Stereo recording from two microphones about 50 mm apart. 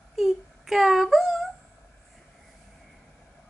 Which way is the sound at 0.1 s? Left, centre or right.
Centre.